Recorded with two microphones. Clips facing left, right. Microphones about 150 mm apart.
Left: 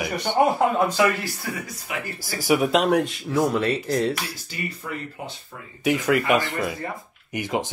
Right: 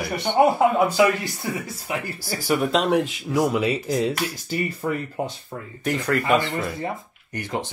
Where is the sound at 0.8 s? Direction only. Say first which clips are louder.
Right 2 dB; 15° right (ahead or behind).